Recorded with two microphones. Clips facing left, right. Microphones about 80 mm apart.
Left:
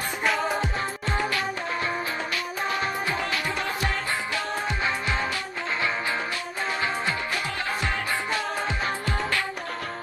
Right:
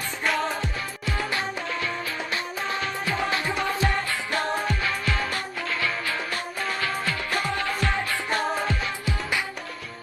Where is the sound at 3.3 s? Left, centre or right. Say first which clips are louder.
Right 2 dB; right.